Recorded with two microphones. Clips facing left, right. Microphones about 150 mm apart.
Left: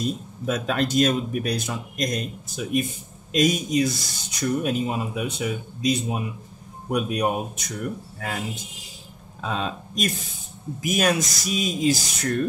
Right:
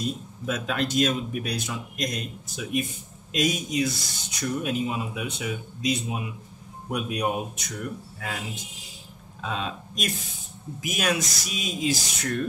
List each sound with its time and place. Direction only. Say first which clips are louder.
0.5 s speech: left 3 dB; 40° left (ahead or behind)
9.4 s speech: left 3 dB; 40° left (ahead or behind)